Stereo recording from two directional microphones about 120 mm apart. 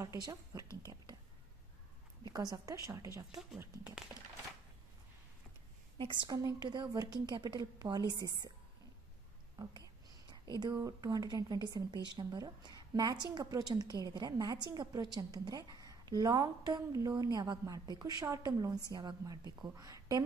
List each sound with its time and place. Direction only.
0.0 s a woman's voice: 30° right (ahead or behind)
2.2 s a woman's voice: 30° right (ahead or behind)
5.9 s a woman's voice: 40° right (ahead or behind)
10.3 s a woman's voice: 35° right (ahead or behind)